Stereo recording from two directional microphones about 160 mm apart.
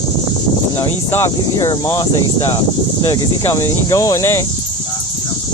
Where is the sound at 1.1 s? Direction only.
20° left (ahead or behind).